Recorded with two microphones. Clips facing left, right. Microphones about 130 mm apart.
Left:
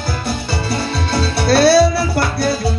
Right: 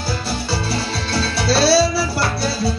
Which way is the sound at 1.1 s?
55° left (ahead or behind).